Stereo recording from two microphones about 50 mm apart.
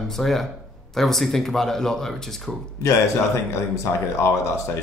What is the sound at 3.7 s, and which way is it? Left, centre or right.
Speech, left.